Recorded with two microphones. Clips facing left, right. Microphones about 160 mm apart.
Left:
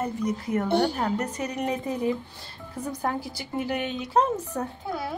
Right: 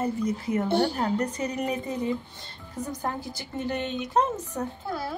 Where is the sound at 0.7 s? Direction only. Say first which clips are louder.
Left 1 dB; 20° left (ahead or behind).